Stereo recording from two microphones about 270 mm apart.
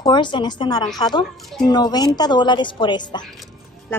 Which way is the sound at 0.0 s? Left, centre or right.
Centre.